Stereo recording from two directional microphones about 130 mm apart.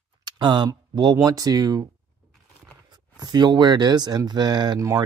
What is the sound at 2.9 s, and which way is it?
Speech, 35° right (ahead or behind).